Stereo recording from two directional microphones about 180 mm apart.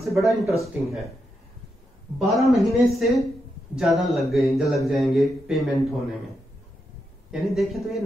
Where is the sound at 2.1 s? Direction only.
Centre (ahead or behind).